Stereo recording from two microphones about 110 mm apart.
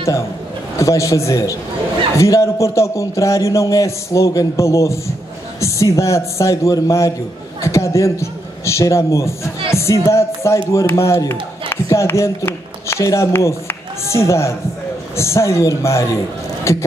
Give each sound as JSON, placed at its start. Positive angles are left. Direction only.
{"t": 0.7, "sound": "a man's voice", "side_deg": 30}